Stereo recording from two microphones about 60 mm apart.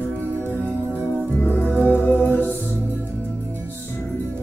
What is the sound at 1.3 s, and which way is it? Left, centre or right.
Music, left.